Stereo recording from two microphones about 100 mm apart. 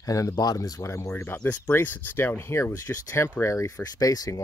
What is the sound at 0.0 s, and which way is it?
Speech, 35° left (ahead or behind).